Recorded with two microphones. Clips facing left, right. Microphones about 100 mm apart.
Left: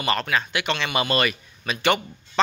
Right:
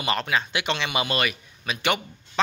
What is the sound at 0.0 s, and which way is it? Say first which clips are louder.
A man's voice: left 1 dB; 15° right (ahead or behind).